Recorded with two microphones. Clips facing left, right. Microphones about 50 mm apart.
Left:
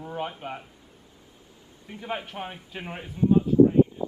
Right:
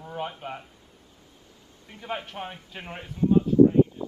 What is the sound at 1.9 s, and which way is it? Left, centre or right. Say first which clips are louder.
Speech: left 1 dB; centre.